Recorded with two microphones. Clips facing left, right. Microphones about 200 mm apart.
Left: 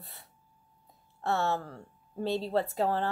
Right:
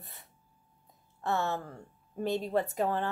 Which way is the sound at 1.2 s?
15° right (ahead or behind).